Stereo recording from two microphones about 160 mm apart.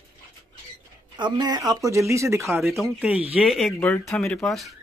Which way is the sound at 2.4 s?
Centre (ahead or behind).